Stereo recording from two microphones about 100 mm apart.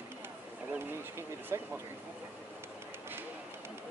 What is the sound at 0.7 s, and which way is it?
Speech, 25° right (ahead or behind).